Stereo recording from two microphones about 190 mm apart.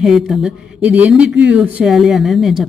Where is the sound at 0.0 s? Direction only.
Centre (ahead or behind).